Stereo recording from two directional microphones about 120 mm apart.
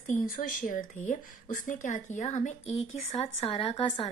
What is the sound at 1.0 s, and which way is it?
A woman's voice, 90° left.